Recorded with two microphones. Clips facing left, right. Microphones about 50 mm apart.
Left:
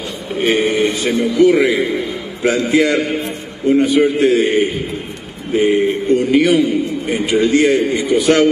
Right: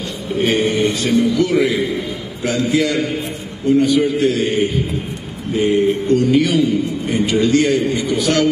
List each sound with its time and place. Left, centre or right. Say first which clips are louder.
0.4 s a man's voice: left 2 dB; centre